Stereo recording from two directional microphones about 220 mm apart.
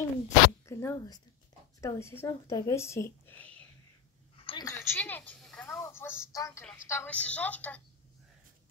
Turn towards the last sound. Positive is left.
turn(degrees=5)  # may be behind; listen again after turning